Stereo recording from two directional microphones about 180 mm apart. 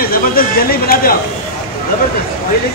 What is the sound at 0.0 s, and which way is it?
Chatter, 55° left (ahead or behind).